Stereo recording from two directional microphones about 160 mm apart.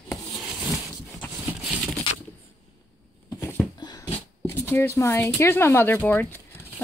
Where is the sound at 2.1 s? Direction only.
30° left (ahead or behind).